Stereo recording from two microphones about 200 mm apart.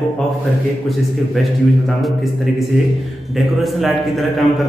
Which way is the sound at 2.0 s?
Centre (ahead or behind).